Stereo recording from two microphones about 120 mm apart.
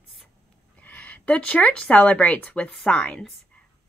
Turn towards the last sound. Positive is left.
turn(degrees=10)  # may be behind; listen again after turning